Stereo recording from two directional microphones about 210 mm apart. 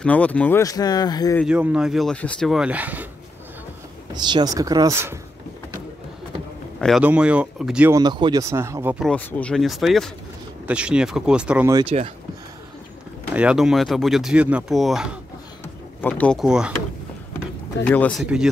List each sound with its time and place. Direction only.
0.0 s speech: 5° left (ahead or behind)
1.4 s speech: 5° right (ahead or behind)
4.1 s speech: 20° right (ahead or behind)
6.8 s speech: 5° right (ahead or behind)
8.0 s speech: 20° right (ahead or behind)
9.0 s speech: 5° left (ahead or behind)
11.7 s speech: 25° right (ahead or behind)
13.3 s speech: 5° right (ahead or behind)
17.8 s speech: 5° left (ahead or behind)